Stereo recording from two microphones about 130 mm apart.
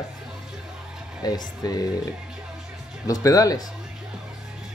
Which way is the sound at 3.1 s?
25° left (ahead or behind).